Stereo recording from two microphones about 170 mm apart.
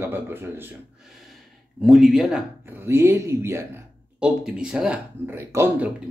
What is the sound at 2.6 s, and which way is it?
Speech, 15° right (ahead or behind).